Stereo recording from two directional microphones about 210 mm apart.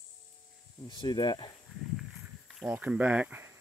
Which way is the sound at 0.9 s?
20° left (ahead or behind).